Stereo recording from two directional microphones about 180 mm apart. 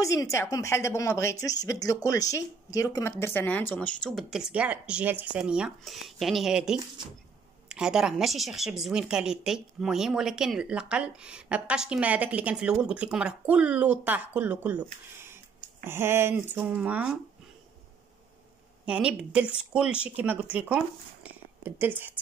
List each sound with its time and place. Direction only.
0.0 s a woman's voice: 15° left (ahead or behind); by 14.8 s 10° right (ahead or behind)
15.8 s speech: 15° right (ahead or behind)
18.9 s speech: 5° right (ahead or behind)